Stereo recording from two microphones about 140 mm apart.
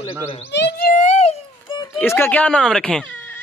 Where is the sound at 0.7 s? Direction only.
90° left.